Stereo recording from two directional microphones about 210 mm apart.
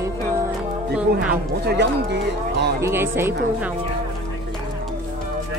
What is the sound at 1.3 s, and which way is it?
Speech, 50° right (ahead or behind).